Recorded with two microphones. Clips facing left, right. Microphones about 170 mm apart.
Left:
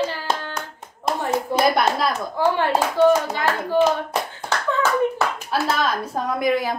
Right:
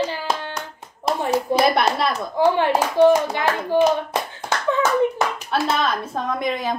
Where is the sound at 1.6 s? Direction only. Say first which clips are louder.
Left 1 dB; 30° right (ahead or behind).